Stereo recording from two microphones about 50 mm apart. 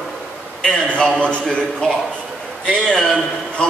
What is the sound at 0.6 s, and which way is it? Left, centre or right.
A man's voice, centre.